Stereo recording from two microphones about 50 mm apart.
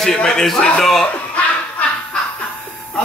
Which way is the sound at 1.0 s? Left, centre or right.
Left.